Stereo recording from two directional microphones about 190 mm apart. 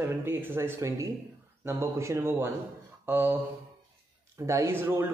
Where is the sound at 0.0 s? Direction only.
10° right (ahead or behind).